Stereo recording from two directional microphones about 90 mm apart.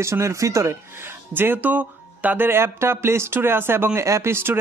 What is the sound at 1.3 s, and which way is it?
Speech, 20° right (ahead or behind).